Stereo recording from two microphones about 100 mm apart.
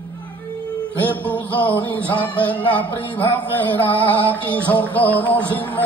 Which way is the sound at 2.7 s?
20° left (ahead or behind).